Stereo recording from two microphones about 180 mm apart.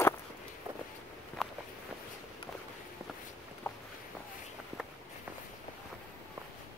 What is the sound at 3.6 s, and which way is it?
Walk, 10° left (ahead or behind).